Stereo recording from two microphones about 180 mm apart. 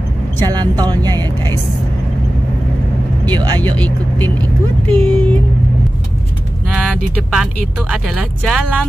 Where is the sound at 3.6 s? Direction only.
10° left (ahead or behind).